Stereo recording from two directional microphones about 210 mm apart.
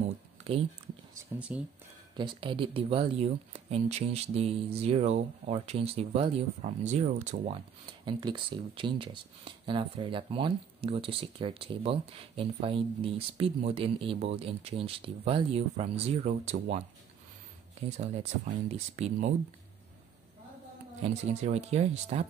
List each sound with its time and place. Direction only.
0.4 s a sound: 30° right (ahead or behind)
1.1 s speech: 5° right (ahead or behind)
2.1 s speech: 20° right (ahead or behind)
8.0 s speech: 20° right (ahead or behind)
21.0 s speech: 30° right (ahead or behind)